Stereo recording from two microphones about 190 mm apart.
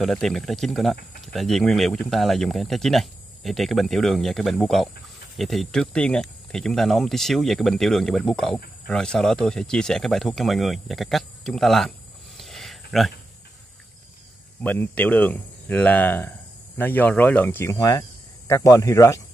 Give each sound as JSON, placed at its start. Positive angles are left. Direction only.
{"t": 0.0, "sound": "speech", "side_deg": 0}
{"t": 12.4, "sound": "a sound", "side_deg": 0}
{"t": 14.6, "sound": "speech", "side_deg": 10}